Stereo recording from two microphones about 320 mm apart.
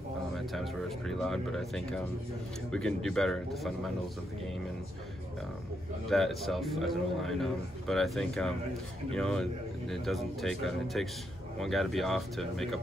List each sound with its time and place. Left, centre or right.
0.6 s a man's voice: centre
6.0 s a man's voice: centre